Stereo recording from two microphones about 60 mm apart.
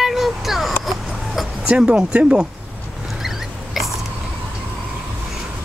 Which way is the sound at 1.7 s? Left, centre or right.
Centre.